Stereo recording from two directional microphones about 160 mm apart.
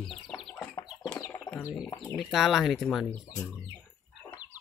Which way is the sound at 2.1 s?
Centre (ahead or behind).